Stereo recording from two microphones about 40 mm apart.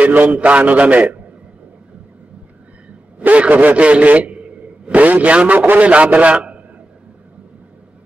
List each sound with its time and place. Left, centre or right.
0.0 s a man's voice: right
3.2 s a man's voice: right